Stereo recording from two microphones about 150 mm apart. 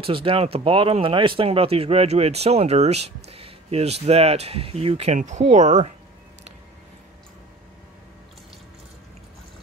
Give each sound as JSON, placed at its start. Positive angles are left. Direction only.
{"t": 0.0, "sound": "speech", "side_deg": -35}